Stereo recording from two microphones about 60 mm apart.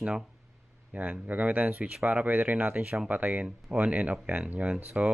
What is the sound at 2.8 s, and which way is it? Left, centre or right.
Speech, centre.